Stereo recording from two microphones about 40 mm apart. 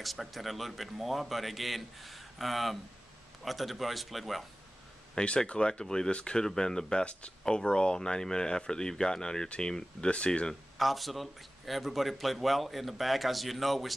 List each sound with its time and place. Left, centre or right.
0.0 s a man's voice: centre
5.1 s speech: left
10.8 s a man's voice: centre